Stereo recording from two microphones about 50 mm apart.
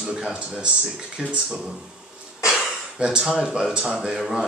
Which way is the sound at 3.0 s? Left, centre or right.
Centre.